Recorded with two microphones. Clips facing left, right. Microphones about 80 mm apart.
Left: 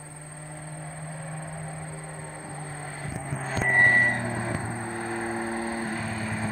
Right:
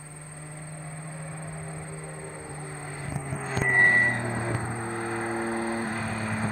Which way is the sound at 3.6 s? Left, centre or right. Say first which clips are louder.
Left 1 dB; centre.